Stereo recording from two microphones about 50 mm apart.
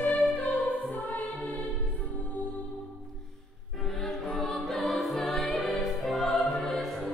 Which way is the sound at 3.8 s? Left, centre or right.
Centre.